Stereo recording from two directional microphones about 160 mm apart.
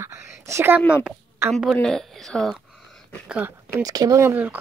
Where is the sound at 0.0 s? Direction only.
15° right (ahead or behind).